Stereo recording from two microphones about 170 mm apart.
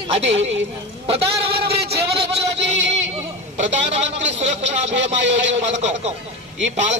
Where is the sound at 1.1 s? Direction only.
35° right (ahead or behind).